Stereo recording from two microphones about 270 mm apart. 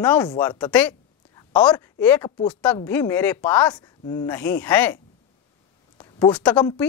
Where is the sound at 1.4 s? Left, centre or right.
Centre.